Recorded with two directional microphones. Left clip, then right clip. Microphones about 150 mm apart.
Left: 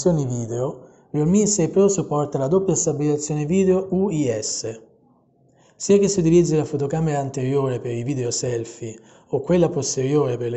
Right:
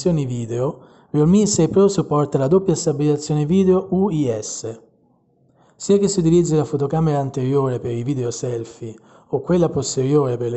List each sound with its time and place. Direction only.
0.3 s speech: 30° right (ahead or behind)
5.9 s speech: 30° right (ahead or behind)